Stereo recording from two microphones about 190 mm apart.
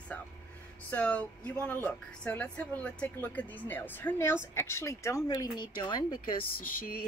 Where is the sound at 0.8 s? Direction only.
10° left (ahead or behind).